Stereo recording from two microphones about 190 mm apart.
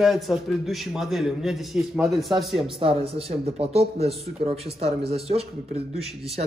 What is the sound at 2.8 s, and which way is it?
Speech, 30° right (ahead or behind).